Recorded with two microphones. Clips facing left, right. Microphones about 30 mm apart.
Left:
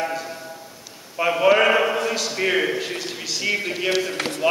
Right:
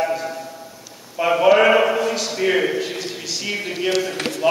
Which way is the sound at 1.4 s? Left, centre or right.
Centre.